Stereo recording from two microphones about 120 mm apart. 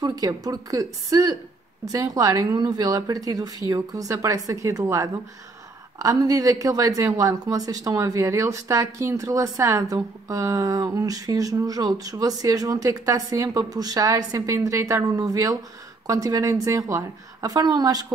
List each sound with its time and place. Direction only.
0.0 s a woman's voice: 30° right (ahead or behind)